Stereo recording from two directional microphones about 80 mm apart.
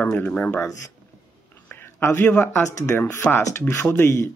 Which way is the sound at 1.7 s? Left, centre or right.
Left.